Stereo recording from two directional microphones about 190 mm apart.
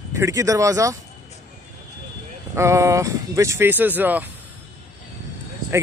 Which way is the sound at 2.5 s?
15° right (ahead or behind).